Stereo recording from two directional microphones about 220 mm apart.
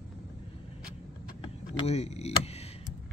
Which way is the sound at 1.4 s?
30° left (ahead or behind).